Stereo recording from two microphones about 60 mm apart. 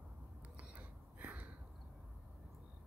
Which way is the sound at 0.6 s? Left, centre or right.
Right.